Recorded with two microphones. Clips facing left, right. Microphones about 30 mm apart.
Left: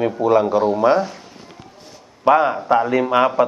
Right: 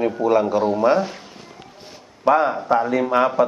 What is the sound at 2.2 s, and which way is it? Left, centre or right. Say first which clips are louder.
A man's voice: left 2 dB; centre.